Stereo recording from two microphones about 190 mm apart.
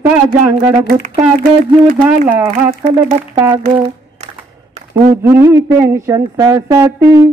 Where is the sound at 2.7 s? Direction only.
40° right (ahead or behind).